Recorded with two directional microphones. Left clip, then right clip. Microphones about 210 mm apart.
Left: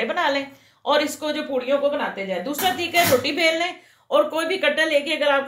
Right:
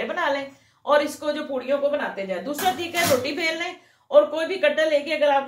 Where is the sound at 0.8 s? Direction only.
50° left (ahead or behind).